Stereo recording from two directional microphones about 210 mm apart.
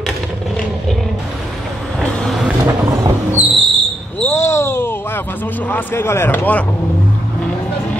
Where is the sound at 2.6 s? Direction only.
15° right (ahead or behind).